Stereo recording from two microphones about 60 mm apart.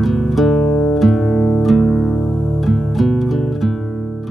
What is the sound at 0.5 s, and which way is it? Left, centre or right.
Music, left.